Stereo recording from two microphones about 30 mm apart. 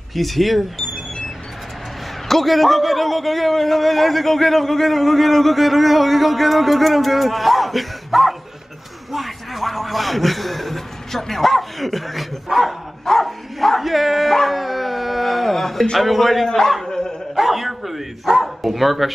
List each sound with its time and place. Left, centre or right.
0.1 s a man's voice: centre
2.2 s a man's voice: centre
12.4 s speech: centre
13.2 s speech: centre
14.5 s dog: centre
16.0 s a man's voice: centre
16.8 s dog: centre
17.4 s a man's voice: centre